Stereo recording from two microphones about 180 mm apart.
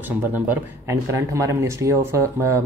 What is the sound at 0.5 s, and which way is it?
Speech, 15° right (ahead or behind).